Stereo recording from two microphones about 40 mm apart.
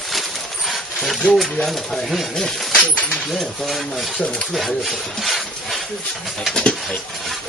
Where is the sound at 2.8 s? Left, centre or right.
Left.